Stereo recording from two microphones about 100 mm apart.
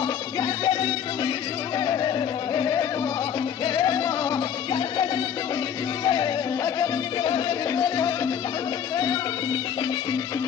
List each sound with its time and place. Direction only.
0.0 s music: 45° left (ahead or behind)
4.7 s music: 45° left (ahead or behind)